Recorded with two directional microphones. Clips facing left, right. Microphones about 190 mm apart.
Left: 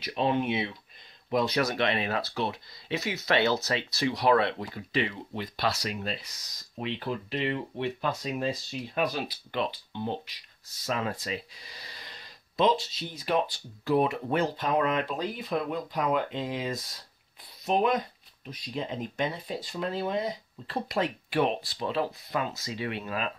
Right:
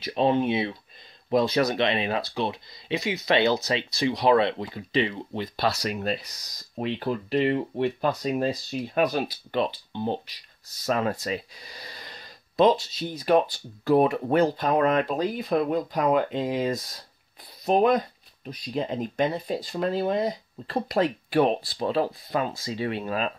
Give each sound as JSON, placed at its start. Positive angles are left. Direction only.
{"t": 0.0, "sound": "speech", "side_deg": -30}
{"t": 5.9, "sound": "speech", "side_deg": -45}
{"t": 10.9, "sound": "speech", "side_deg": -45}